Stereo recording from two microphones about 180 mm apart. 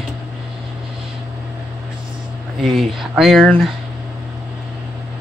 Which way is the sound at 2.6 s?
Centre (ahead or behind).